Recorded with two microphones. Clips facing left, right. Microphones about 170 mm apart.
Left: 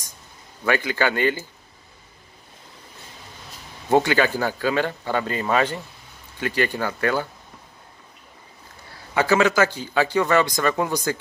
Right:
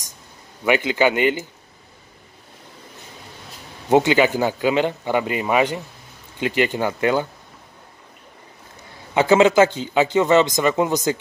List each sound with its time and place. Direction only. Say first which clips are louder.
0.7 s speech: right 4 dB; 20° right (ahead or behind)
3.9 s speech: right 3 dB; 20° right (ahead or behind)
9.1 s speech: right 5 dB; 20° right (ahead or behind)